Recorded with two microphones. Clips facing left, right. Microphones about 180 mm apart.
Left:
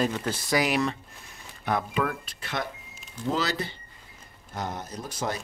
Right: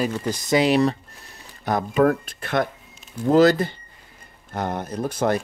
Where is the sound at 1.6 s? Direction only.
40° right (ahead or behind).